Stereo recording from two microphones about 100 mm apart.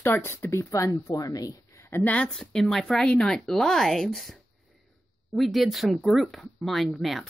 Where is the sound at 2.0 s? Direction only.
15° left (ahead or behind).